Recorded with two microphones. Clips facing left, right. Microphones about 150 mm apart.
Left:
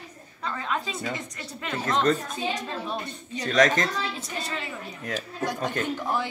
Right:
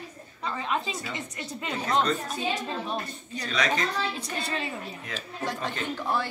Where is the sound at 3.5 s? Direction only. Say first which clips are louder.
Left 6 dB; 45° left (ahead or behind).